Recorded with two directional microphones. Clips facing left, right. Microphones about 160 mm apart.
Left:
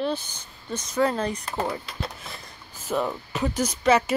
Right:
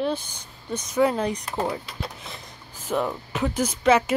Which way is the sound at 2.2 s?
20° right (ahead or behind).